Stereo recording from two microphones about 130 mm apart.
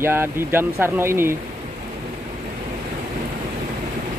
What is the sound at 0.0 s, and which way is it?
Speech, 15° right (ahead or behind).